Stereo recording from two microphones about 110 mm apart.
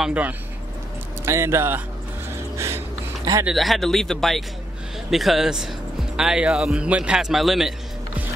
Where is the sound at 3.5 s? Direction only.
Centre (ahead or behind).